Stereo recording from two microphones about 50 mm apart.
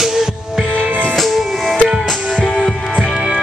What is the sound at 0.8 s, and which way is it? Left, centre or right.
Music, right.